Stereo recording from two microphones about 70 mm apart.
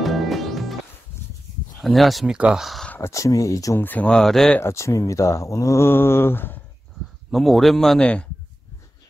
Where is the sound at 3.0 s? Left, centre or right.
Left.